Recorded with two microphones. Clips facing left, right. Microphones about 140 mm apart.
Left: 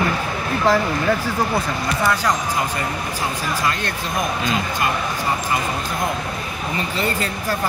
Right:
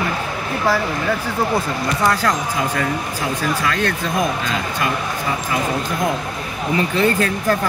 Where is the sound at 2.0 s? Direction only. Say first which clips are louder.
Right 2 dB; 55° right (ahead or behind).